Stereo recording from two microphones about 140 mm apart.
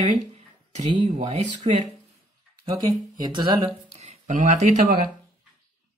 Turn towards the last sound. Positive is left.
turn(degrees=-70)  # may be behind; listen again after turning